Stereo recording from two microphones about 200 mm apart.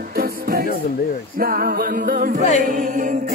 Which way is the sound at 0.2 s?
50° right (ahead or behind).